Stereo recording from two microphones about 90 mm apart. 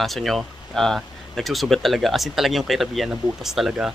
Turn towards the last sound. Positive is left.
turn(degrees=-5)  # may be behind; listen again after turning